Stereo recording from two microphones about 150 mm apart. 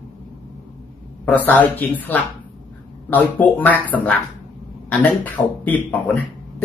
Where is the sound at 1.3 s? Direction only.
10° left (ahead or behind).